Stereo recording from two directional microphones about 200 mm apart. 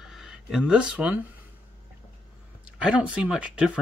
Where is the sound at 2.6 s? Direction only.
5° right (ahead or behind).